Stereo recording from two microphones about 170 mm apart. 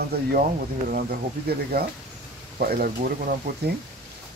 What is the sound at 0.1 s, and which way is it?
Speech, 70° right (ahead or behind).